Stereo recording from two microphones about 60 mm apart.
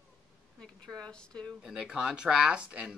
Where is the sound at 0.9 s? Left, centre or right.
Centre.